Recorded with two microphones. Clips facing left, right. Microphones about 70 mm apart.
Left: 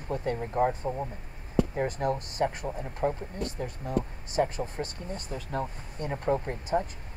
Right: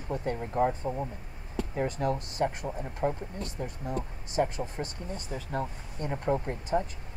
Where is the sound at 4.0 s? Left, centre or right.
Left.